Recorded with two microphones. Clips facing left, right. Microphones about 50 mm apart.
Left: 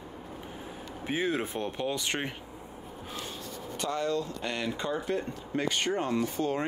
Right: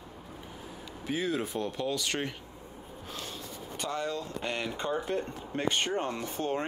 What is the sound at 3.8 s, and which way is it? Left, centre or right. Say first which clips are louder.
Speech: left 3 dB; centre.